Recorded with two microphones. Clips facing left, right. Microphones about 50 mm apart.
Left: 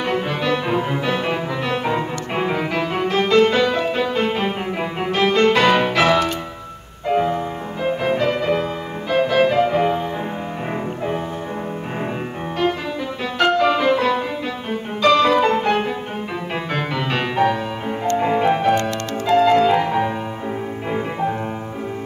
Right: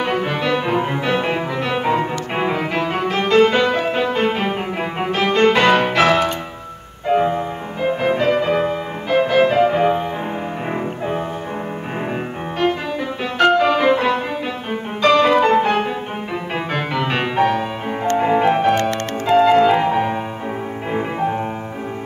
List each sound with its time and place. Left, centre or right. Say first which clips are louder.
0.0 s music: right 1 dB; centre
13.4 s music: right 2 dB; centre
18.8 s music: right 2 dB; right
19.3 s music: right 2 dB; centre